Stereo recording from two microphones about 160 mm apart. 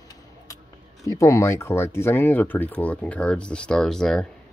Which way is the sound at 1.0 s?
20° left (ahead or behind).